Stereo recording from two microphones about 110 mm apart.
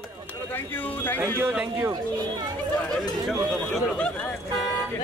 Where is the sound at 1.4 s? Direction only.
20° right (ahead or behind).